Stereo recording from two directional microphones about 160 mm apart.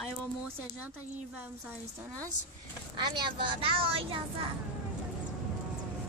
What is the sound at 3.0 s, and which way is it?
A woman's voice, 30° right (ahead or behind).